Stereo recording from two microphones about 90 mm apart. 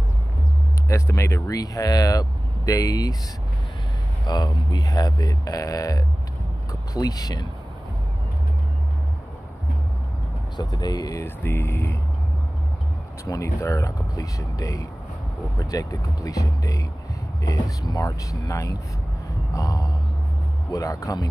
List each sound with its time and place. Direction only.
0.8 s speech: 30° left (ahead or behind)
1.5 s speech: 40° left (ahead or behind)
4.3 s speech: 45° left (ahead or behind)
10.6 s speech: 50° left (ahead or behind)
11.2 s speech: 25° left (ahead or behind)
13.2 s speech: 35° left (ahead or behind)